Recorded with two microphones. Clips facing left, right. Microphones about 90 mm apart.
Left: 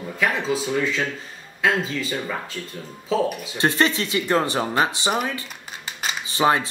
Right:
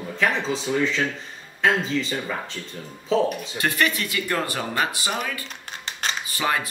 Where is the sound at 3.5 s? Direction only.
25° left (ahead or behind).